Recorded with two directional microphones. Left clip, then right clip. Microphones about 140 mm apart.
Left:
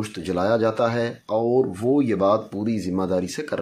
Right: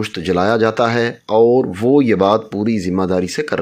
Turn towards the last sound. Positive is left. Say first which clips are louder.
# right 6 dB
turn(degrees=-45)  # may be behind; listen again after turning